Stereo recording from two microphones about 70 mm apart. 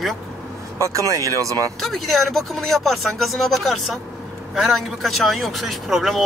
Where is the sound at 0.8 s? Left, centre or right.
Right.